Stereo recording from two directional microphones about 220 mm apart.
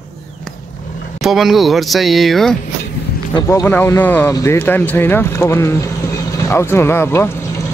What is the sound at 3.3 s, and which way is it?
Speech, 15° left (ahead or behind).